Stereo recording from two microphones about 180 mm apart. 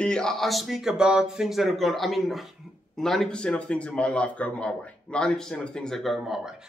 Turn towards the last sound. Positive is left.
turn(degrees=-5)  # may be behind; listen again after turning